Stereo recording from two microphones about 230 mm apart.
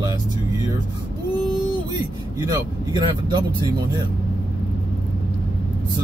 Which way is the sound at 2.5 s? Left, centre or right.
Centre.